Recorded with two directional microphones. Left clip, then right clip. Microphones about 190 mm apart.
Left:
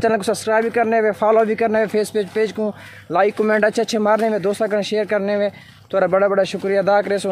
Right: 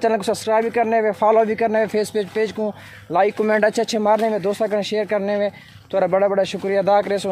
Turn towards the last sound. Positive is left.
turn(degrees=0)  # may be behind; listen again after turning